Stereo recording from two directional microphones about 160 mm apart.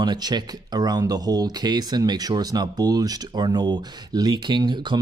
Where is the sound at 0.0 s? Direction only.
25° right (ahead or behind).